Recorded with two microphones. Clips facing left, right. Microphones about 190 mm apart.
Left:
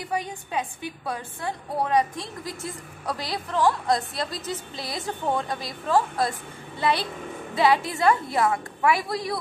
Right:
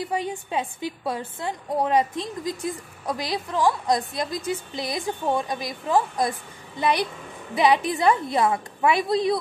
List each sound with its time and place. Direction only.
0.5 s a woman's voice: 20° right (ahead or behind)